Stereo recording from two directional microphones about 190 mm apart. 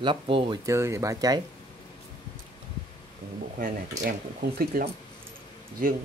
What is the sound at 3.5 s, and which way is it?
Speech, 45° right (ahead or behind).